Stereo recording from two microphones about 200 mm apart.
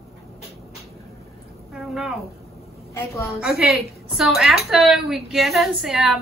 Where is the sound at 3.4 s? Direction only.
5° right (ahead or behind).